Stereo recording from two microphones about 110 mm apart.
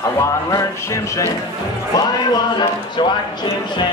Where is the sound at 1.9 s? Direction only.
40° left (ahead or behind).